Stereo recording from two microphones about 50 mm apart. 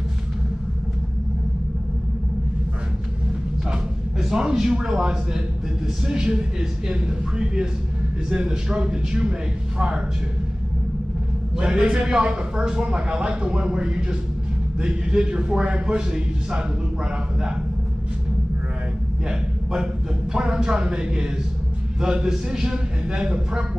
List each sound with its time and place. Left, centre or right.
3.7 s a man's voice: centre
11.5 s a man's voice: centre
19.2 s a man's voice: centre